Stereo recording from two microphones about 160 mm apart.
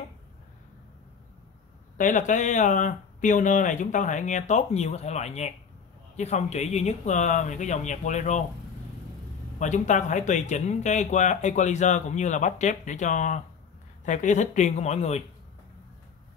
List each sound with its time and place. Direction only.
2.0 s speech: 50° left (ahead or behind)
9.6 s speech: 50° left (ahead or behind)